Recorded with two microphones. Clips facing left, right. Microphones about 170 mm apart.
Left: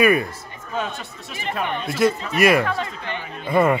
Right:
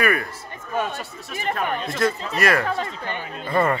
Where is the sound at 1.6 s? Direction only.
40° right (ahead or behind).